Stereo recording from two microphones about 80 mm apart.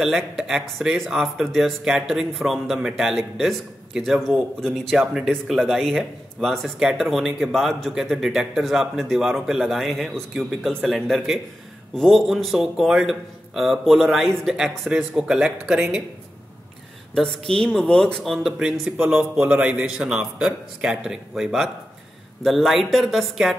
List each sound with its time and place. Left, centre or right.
0.0 s speech: centre
4.9 s speech: centre
17.1 s speech: centre